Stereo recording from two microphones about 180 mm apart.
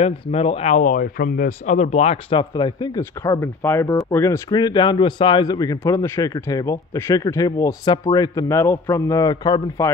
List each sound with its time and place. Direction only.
0.0 s speech: 35° left (ahead or behind)